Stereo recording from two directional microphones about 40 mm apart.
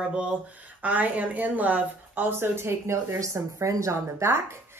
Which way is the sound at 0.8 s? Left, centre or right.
Right.